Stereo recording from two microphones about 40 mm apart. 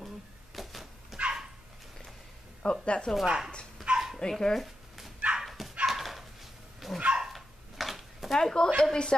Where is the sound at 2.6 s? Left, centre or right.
Left.